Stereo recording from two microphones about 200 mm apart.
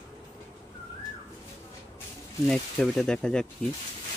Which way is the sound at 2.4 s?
Centre (ahead or behind).